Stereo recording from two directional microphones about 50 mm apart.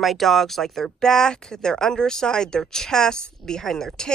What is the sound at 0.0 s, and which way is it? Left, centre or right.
Speech, centre.